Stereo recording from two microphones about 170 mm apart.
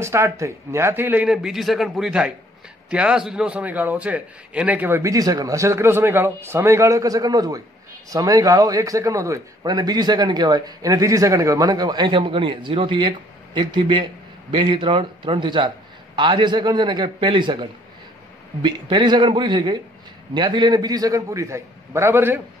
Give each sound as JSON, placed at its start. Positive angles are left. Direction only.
{"t": 0.0, "sound": "a man's voice", "side_deg": -15}